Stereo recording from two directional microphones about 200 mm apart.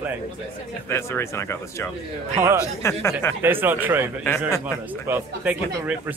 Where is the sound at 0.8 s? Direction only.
10° left (ahead or behind).